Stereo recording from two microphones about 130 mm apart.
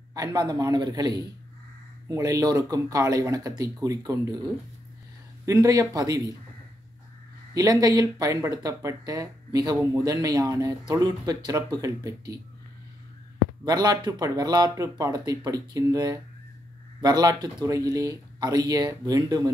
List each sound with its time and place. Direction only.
0.1 s speech: 30° right (ahead or behind)
5.4 s speech: 25° right (ahead or behind)
7.5 s speech: 30° right (ahead or behind)
13.7 s speech: 30° right (ahead or behind)